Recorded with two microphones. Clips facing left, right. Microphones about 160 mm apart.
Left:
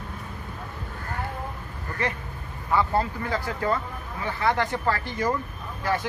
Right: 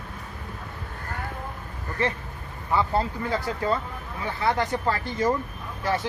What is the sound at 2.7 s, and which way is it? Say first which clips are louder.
Speech: even; 25° right (ahead or behind).